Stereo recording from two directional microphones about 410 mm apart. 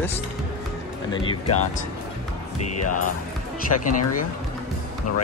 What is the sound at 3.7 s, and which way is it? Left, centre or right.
Speech, left.